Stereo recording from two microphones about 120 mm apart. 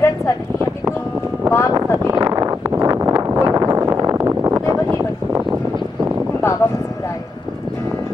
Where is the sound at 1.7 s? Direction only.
30° right (ahead or behind).